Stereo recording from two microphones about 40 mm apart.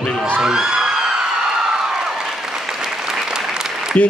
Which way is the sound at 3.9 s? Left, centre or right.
Left.